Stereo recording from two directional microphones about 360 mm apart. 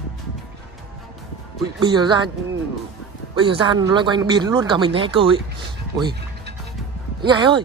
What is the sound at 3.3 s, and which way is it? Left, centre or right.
Speech, centre.